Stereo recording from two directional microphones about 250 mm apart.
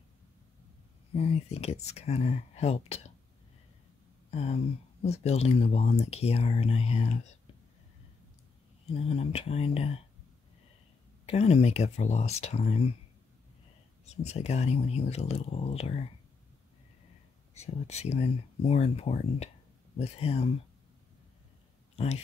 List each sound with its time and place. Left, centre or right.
1.1 s speech: left
4.3 s speech: left
8.9 s speech: left
11.2 s speech: left
14.0 s speech: left
17.6 s speech: left
21.9 s speech: left